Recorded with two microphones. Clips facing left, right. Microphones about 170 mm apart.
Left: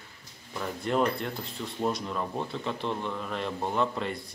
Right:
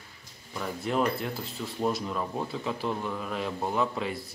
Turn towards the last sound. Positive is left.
turn(degrees=-5)  # may be behind; listen again after turning